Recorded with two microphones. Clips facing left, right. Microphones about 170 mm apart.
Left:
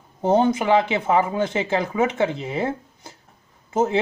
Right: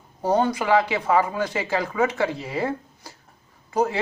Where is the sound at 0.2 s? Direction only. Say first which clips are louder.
Left 3 dB; 25° left (ahead or behind).